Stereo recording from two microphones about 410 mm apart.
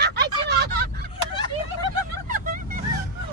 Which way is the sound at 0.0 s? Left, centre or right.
Right.